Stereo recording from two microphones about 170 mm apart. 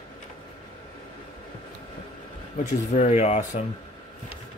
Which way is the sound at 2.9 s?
40° left (ahead or behind).